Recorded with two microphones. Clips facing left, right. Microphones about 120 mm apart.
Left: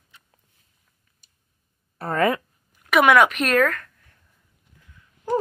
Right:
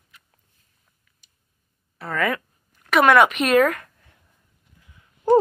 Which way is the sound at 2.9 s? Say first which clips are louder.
Even; 5° left (ahead or behind).